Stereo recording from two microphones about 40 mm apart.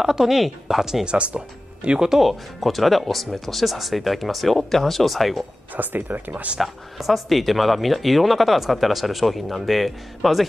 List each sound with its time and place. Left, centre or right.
0.0 s a woman's voice: centre
1.0 s speech: right
2.0 s speech: centre
5.8 s speech: right
6.3 s speech: right
6.6 s speech: centre